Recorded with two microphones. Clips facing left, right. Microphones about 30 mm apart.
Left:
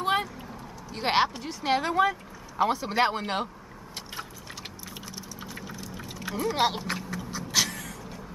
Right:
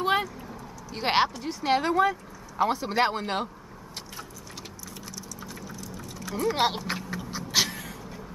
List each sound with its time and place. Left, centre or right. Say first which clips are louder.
0.0 s vehicle: right 1 dB; centre
0.9 s a woman's voice: even; centre
5.1 s a sound: even; left
6.3 s a woman's voice: right 1 dB; centre
6.9 s vehicle: even; centre